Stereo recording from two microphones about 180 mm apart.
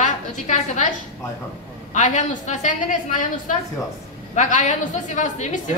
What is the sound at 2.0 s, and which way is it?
A woman's voice, 45° left (ahead or behind).